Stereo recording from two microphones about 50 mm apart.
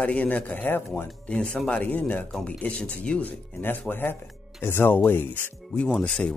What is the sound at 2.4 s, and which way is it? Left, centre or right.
Speech, left.